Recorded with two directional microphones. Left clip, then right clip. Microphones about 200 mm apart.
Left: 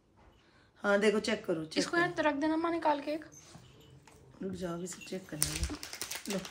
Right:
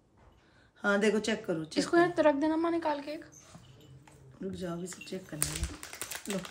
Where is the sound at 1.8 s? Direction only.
20° right (ahead or behind); by 3.3 s centre (ahead or behind).